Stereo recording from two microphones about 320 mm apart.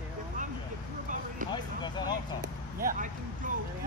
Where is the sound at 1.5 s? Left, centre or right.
Centre.